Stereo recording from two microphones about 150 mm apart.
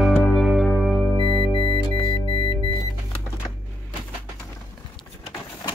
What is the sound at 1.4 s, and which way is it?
Music, 35° left (ahead or behind).